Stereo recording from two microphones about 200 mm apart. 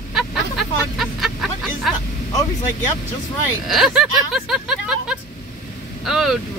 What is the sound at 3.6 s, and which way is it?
Speech, centre (ahead or behind).